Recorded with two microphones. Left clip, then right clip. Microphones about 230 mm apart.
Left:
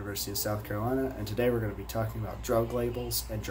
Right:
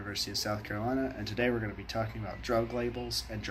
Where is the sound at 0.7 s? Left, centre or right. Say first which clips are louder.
Left 2 dB; centre.